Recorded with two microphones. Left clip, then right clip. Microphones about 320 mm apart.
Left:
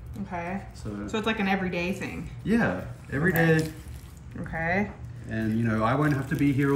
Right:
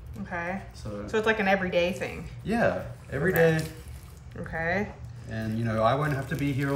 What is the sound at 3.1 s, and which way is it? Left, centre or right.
Speech, right.